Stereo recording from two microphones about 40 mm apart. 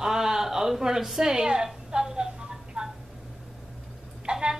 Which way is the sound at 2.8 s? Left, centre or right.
Right.